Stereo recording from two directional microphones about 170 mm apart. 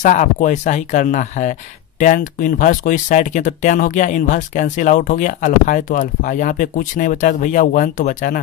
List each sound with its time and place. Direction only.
0.0 s speech: 45° left (ahead or behind)